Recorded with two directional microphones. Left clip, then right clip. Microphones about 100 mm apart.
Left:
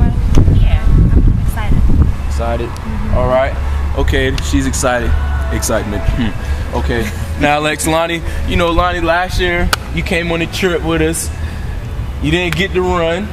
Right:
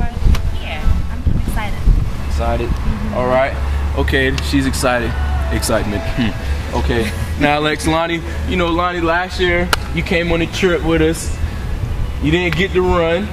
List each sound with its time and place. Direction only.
3.2 s speech: centre (ahead or behind)
7.3 s speech: 10° left (ahead or behind)
12.3 s speech: 25° left (ahead or behind)